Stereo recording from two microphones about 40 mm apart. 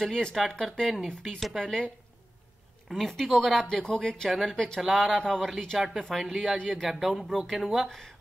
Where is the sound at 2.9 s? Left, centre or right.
Centre.